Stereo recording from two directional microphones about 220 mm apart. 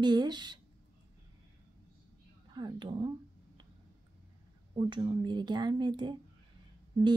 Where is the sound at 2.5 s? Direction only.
20° right (ahead or behind).